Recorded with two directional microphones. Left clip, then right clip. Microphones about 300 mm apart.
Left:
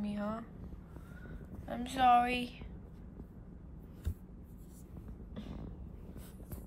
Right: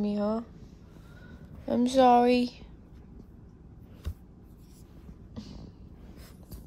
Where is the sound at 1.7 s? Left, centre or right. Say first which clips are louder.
Right 7 dB; centre.